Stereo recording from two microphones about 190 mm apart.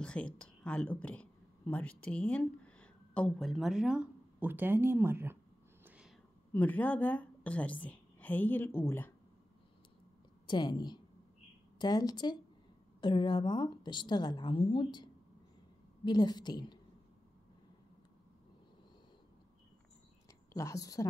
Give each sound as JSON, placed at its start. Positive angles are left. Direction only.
{"t": 0.0, "sound": "a woman's voice", "side_deg": 5}
{"t": 5.9, "sound": "whispering", "side_deg": -5}
{"t": 6.5, "sound": "a woman's voice", "side_deg": 10}
{"t": 10.4, "sound": "a woman's voice", "side_deg": 25}
{"t": 20.5, "sound": "a woman's voice", "side_deg": 15}